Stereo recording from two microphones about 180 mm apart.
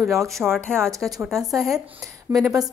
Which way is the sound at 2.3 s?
20° right (ahead or behind).